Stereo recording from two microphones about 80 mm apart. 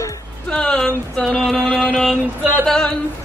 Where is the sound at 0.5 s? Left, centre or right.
Centre.